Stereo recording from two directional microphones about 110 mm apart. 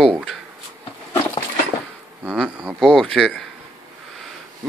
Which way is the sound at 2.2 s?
5° right (ahead or behind).